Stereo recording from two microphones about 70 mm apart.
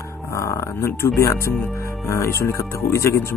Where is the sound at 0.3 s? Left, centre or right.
Left.